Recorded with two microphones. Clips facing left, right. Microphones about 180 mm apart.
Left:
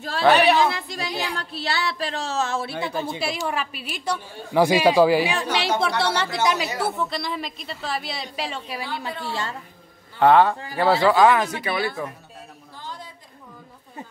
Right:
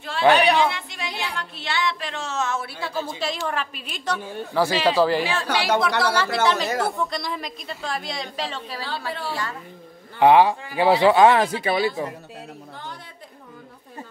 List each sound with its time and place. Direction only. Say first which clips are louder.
0.3 s a woman's voice: left 1 dB; 5° left (ahead or behind)
0.6 s speech: left 1 dB; 40° left (ahead or behind)
3.2 s speech: even; 10° left (ahead or behind)
5.8 s speech: right 1 dB; 30° left (ahead or behind)
6.4 s a woman's voice: even; 10° left (ahead or behind); by 9.6 s 25° left (ahead or behind)
10.1 s a man's voice: right 1 dB; 15° right (ahead or behind)